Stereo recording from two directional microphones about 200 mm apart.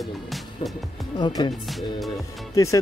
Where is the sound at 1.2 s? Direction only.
20° left (ahead or behind).